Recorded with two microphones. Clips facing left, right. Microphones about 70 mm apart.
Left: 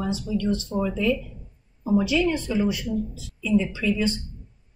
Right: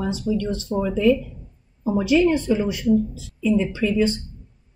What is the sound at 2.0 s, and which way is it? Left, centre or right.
A woman's voice, right.